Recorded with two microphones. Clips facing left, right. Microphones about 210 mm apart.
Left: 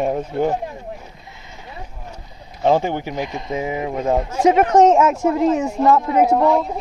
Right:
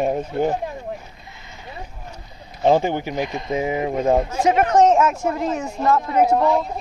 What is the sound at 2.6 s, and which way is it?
Speech, 20° right (ahead or behind).